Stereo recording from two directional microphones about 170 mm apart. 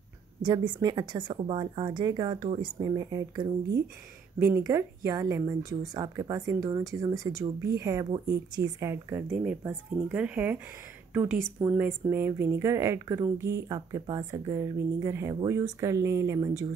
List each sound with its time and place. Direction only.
0.4 s a woman's voice: 25° right (ahead or behind)